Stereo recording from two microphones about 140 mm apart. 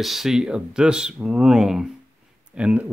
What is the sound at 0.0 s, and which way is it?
Speech, centre (ahead or behind).